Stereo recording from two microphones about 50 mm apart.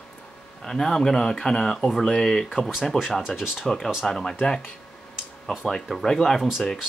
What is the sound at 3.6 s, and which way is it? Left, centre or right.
Speech, centre.